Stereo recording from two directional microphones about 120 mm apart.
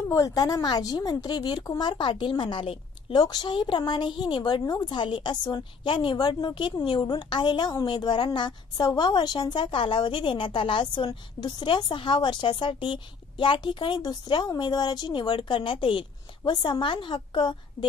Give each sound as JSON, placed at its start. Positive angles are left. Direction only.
{"t": 0.1, "sound": "a woman's voice", "side_deg": 30}
{"t": 3.2, "sound": "a woman's voice", "side_deg": 35}